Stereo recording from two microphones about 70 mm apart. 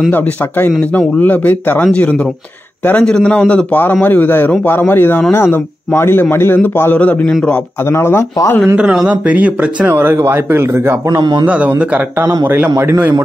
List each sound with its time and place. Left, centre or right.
0.1 s speech: left
3.0 s a man's voice: centre
7.8 s speech: left
8.7 s speech: centre
9.8 s speech: right
11.4 s a man's voice: right
12.4 s speech: right